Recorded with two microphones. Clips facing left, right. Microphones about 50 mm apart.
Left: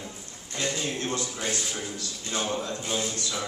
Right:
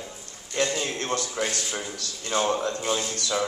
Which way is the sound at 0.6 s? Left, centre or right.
Right.